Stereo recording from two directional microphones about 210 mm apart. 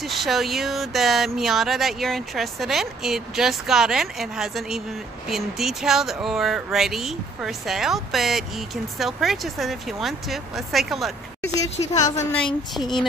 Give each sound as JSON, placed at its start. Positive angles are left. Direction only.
{"t": 0.0, "sound": "speech", "side_deg": 0}
{"t": 11.7, "sound": "a woman's voice", "side_deg": 30}
{"t": 12.7, "sound": "speech", "side_deg": 0}